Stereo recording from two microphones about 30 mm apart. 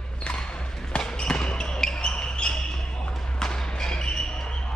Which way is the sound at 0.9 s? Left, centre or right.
Left.